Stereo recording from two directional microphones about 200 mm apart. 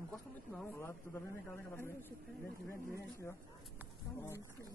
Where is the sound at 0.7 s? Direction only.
15° left (ahead or behind).